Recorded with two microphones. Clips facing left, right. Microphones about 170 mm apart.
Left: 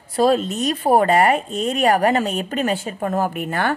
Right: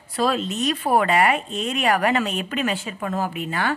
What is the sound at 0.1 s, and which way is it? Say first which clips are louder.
Speech: left 6 dB; 40° left (ahead or behind).